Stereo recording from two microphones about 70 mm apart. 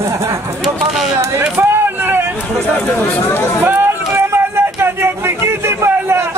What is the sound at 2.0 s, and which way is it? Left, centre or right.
Hubbub, right.